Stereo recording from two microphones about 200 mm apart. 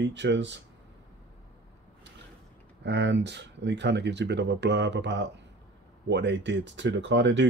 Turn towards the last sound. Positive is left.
turn(degrees=-60)  # may be behind; listen again after turning